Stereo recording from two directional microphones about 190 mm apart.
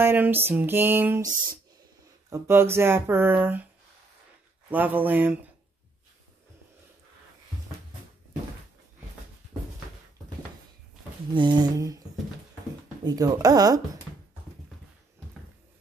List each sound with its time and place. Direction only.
0.0 s speech: 10° right (ahead or behind)
4.6 s speech: 10° right (ahead or behind)
11.3 s speech: 25° right (ahead or behind)
13.0 s speech: 20° right (ahead or behind)